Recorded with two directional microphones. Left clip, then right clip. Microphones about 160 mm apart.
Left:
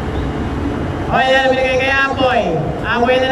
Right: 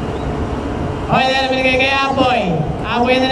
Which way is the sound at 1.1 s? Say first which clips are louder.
Left 2 dB; 25° right (ahead or behind).